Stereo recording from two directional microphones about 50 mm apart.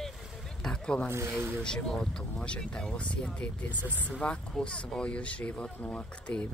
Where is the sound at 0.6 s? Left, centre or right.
Centre.